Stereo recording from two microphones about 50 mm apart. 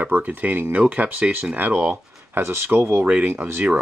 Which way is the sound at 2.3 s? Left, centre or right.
Right.